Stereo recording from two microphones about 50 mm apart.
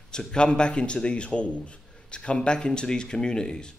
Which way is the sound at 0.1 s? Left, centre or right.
Centre.